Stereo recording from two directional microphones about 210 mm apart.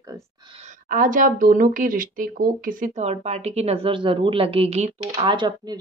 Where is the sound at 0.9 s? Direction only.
40° right (ahead or behind).